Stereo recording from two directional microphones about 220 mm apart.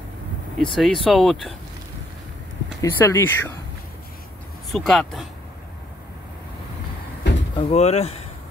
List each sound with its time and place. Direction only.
0.6 s speech: centre (ahead or behind)
2.8 s speech: 15° left (ahead or behind)
4.6 s speech: centre (ahead or behind)
7.5 s speech: 30° left (ahead or behind)